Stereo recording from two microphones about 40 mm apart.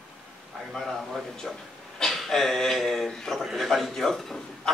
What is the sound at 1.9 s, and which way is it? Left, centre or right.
A man's voice, centre.